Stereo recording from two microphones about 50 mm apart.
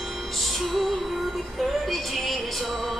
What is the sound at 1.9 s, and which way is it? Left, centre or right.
Music, centre.